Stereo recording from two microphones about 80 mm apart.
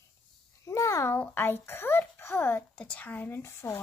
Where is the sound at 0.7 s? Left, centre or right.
Left.